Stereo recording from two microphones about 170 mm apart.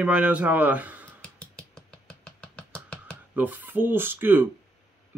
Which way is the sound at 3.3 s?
10° right (ahead or behind).